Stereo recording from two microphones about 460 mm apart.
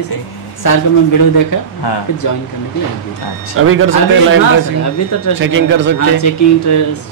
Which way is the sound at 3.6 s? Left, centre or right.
Right.